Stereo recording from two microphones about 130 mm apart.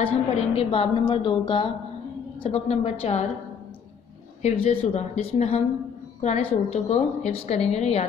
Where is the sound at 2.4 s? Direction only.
55° left (ahead or behind).